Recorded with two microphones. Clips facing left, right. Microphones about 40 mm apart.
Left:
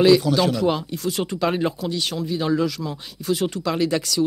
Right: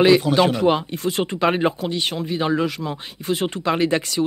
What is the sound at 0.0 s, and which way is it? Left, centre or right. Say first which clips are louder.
Speech: right 1 dB; right.